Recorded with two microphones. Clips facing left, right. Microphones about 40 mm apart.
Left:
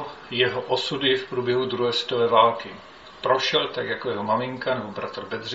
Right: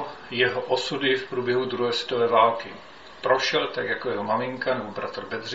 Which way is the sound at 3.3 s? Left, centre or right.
Left.